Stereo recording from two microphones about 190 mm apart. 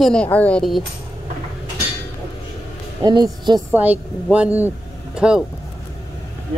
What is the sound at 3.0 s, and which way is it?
Speech, 25° right (ahead or behind).